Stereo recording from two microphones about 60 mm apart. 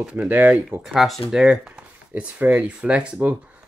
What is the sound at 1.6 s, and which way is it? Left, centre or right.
Speech, right.